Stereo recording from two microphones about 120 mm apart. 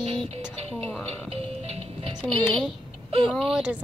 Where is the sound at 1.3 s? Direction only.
55° right (ahead or behind).